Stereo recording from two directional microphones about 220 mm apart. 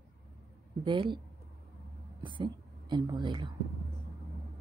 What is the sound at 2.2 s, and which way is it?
A woman's voice, 20° right (ahead or behind).